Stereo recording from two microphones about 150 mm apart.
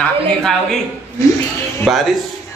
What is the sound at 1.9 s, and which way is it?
Speech, centre (ahead or behind).